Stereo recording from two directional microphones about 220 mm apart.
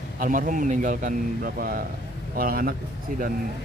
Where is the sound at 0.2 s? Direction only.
35° right (ahead or behind).